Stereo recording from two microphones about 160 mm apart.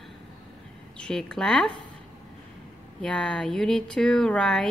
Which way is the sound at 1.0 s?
5° left (ahead or behind).